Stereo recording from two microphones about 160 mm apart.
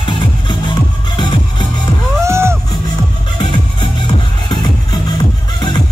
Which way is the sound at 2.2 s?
15° right (ahead or behind).